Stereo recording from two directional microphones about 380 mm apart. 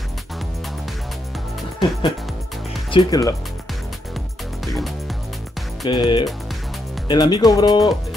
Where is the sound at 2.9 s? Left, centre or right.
Centre.